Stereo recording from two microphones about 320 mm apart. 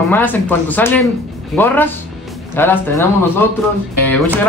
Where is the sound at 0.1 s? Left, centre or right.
Centre.